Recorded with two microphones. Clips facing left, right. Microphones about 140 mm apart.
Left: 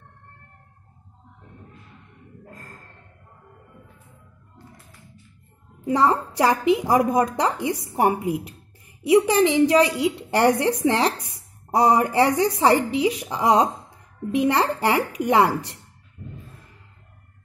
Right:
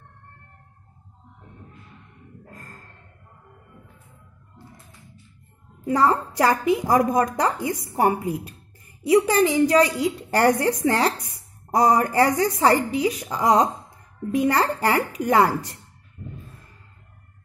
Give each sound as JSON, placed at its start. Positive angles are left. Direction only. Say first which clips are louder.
{"t": 5.9, "sound": "a woman's voice", "louder": "even", "side_deg": 15}